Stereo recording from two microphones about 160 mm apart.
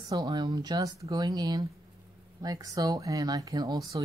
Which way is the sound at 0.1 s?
25° right (ahead or behind).